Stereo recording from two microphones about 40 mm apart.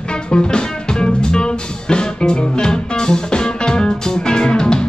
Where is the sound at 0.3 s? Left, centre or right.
Left.